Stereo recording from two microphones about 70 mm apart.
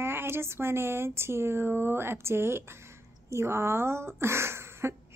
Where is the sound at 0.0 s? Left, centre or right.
Right.